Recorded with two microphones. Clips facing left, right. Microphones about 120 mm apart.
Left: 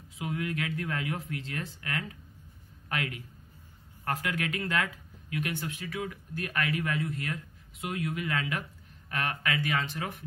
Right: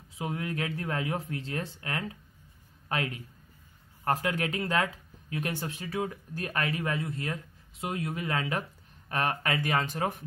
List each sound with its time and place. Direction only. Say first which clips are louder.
0.2 s speech: even; 30° right (ahead or behind)